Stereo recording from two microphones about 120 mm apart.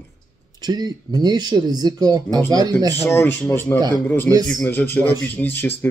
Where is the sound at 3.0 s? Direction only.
20° left (ahead or behind).